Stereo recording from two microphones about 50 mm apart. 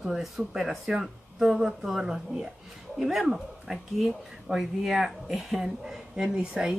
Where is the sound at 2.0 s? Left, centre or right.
Centre.